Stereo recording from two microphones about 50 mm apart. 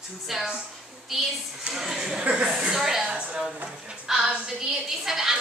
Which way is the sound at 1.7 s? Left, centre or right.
Centre.